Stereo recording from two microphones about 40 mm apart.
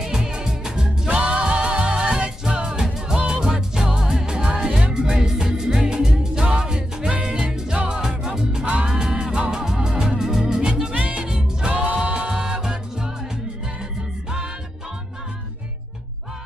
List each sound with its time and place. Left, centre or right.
0.0 s music: centre
1.1 s music: right
11.0 s music: right
11.2 s music: right